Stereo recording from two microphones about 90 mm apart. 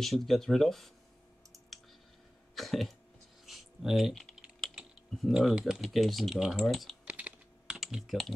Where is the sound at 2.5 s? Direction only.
Centre (ahead or behind).